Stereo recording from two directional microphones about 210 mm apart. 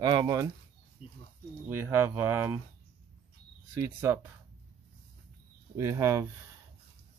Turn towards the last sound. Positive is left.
turn(degrees=-15)  # may be behind; listen again after turning